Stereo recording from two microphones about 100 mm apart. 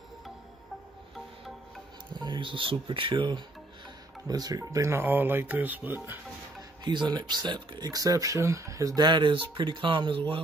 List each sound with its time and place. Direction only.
2.1 s speech: 50° right (ahead or behind)
4.3 s speech: 40° right (ahead or behind); by 6.1 s 20° right (ahead or behind)
6.8 s speech: 50° right (ahead or behind)
9.0 s speech: 55° right (ahead or behind)